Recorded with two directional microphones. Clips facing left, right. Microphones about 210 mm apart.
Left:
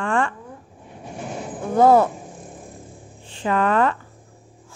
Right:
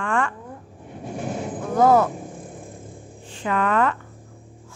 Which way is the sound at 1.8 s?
30° left (ahead or behind).